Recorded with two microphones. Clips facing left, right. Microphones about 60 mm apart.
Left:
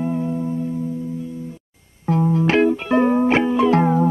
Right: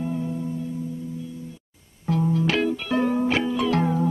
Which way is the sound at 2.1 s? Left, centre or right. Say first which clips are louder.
Left 5 dB; left.